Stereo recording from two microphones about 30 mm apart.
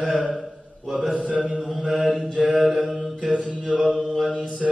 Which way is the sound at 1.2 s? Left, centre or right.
Right.